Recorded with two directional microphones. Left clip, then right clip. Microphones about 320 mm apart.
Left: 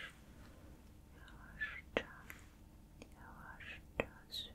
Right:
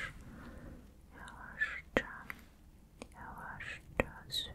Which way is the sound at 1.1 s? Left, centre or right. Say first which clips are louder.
Right 9 dB; right.